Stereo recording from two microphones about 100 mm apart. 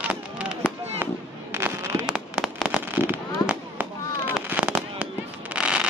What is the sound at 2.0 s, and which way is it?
Fireworks, 10° right (ahead or behind).